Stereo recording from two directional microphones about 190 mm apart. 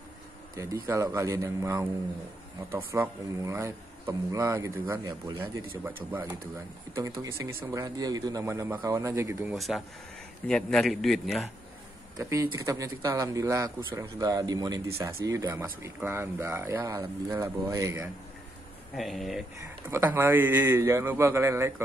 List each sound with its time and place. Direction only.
0.8 s speech: 10° right (ahead or behind)
7.0 s speech: 15° right (ahead or behind)
9.5 s a man's voice: centre (ahead or behind)
12.2 s speech: 15° right (ahead or behind)
18.9 s a man's voice: centre (ahead or behind)
19.9 s speech: 15° right (ahead or behind)